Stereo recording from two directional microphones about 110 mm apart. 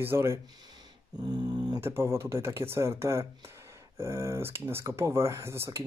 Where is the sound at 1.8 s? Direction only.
25° right (ahead or behind).